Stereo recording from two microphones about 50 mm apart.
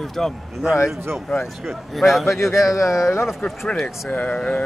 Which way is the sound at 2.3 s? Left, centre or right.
Left.